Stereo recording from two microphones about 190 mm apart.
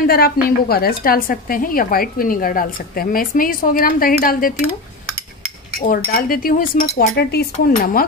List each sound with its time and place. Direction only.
0.0 s a woman's voice: 55° left (ahead or behind)
5.8 s a woman's voice: 50° left (ahead or behind)
7.2 s speech: 60° left (ahead or behind)